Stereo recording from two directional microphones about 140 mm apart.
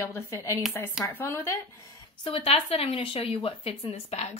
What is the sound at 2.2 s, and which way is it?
Speech, 45° left (ahead or behind).